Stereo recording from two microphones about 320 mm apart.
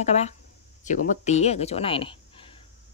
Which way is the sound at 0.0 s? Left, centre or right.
Left.